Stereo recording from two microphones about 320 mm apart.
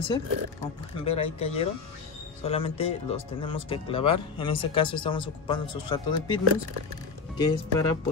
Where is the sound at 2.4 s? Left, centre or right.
Centre.